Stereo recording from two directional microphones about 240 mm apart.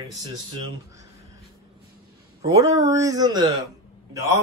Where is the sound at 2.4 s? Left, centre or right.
Centre.